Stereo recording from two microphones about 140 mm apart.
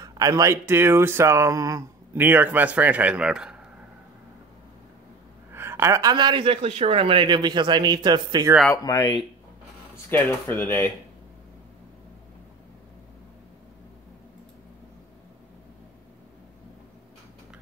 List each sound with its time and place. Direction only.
0.0 s speech: 25° right (ahead or behind); by 3.6 s 5° right (ahead or behind)
5.5 s speech: 15° right (ahead or behind)
8.7 s speech: 25° left (ahead or behind)
10.0 s speech: 15° left (ahead or behind)